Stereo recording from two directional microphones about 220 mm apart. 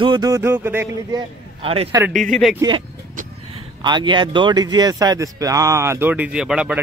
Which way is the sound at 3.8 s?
20° right (ahead or behind).